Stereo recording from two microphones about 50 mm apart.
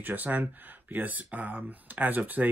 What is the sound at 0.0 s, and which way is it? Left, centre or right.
Speech, right.